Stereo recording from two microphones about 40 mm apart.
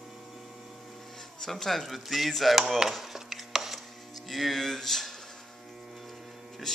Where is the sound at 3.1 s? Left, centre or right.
Centre.